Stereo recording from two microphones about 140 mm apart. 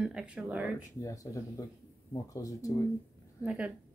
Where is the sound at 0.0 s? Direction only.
5° right (ahead or behind).